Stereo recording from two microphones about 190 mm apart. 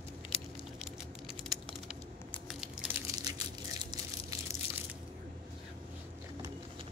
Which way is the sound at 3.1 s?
20° right (ahead or behind).